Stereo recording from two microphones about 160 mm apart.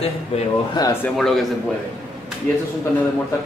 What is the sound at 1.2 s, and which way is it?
Speech, centre (ahead or behind).